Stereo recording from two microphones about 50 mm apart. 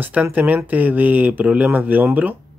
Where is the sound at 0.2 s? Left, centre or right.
Right.